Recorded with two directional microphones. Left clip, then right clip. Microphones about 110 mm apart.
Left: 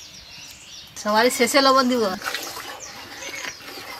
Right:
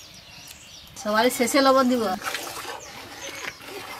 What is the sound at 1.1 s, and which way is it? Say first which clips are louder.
Speech: left 3 dB; 35° left (ahead or behind).